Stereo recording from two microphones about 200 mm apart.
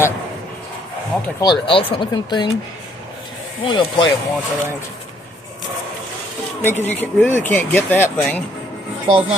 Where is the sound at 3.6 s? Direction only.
25° left (ahead or behind).